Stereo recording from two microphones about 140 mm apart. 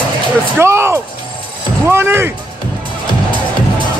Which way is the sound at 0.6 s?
20° right (ahead or behind).